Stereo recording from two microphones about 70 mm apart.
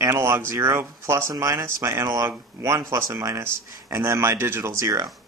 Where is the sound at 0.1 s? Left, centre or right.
Right.